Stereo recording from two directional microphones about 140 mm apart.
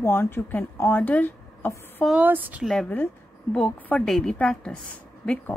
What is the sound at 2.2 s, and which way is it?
Speech, 10° right (ahead or behind).